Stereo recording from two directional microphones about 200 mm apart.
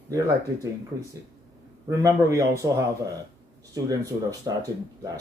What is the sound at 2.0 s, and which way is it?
Speech, 15° right (ahead or behind).